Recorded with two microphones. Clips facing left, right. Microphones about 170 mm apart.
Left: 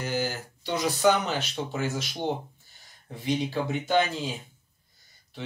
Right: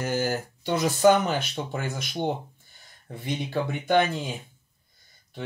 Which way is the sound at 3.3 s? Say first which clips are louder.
Left 1 dB; 55° right (ahead or behind).